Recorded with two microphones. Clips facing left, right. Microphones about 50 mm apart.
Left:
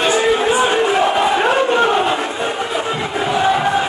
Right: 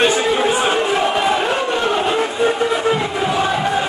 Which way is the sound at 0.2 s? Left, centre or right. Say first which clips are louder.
Left 2 dB; centre.